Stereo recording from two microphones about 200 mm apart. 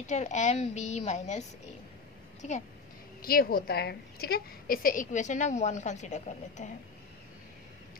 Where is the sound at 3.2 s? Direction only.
50° left (ahead or behind).